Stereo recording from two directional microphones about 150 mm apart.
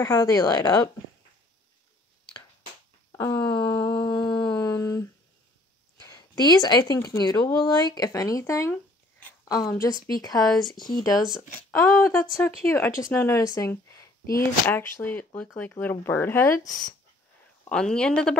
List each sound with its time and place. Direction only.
0.0 s speech: 25° left (ahead or behind)
3.1 s a sound: 20° left (ahead or behind)
3.8 s humming: 25° left (ahead or behind)
6.0 s a woman's voice: 25° left (ahead or behind)
10.4 s speech: centre (ahead or behind)
10.8 s speech: 30° left (ahead or behind)
17.6 s speech: 5° left (ahead or behind)